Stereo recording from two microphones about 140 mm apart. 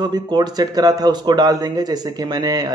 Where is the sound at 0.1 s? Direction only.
30° right (ahead or behind).